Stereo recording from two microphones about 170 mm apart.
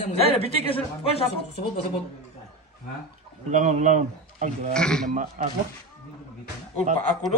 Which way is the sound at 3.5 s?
45° right (ahead or behind).